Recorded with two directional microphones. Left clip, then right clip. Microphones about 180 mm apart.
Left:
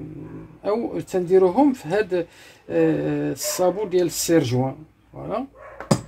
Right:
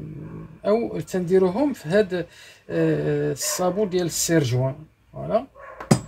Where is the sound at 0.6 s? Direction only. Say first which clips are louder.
Right 2 dB; 40° left (ahead or behind).